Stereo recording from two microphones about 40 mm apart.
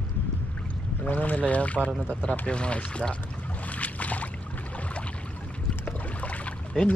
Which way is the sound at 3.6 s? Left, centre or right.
Left.